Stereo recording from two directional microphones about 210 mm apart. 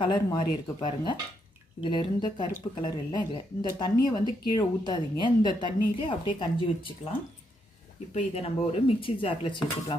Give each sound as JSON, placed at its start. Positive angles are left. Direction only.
{"t": 0.0, "sound": "speech", "side_deg": 25}
{"t": 8.1, "sound": "speech", "side_deg": 30}